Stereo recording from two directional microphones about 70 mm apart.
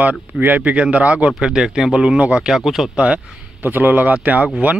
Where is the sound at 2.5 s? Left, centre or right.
Centre.